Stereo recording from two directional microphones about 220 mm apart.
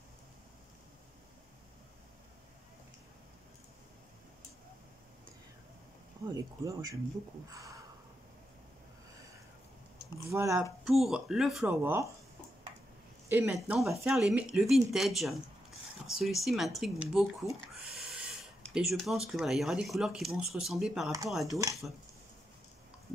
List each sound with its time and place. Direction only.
6.2 s speech: 15° right (ahead or behind)
7.5 s a sound: 15° right (ahead or behind)
10.3 s speech: 10° right (ahead or behind)
10.9 s speech: centre (ahead or behind)
13.3 s speech: 10° right (ahead or behind)
13.6 s speech: centre (ahead or behind)